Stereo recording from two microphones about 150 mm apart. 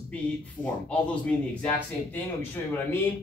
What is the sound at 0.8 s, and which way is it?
Speech, 5° left (ahead or behind).